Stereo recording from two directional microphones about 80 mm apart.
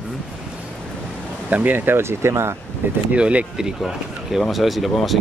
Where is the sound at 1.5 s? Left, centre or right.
Right.